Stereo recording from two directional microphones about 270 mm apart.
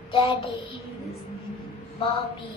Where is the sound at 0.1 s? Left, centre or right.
Centre.